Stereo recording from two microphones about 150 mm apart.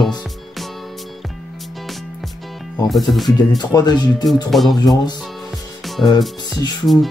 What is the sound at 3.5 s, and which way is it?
Speech, 25° left (ahead or behind).